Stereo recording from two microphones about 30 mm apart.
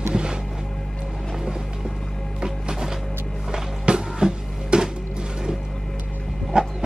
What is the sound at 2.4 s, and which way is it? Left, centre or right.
Music, right.